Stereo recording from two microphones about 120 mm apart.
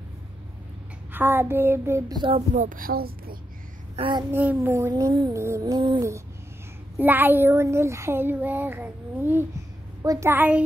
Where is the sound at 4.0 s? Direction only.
40° right (ahead or behind).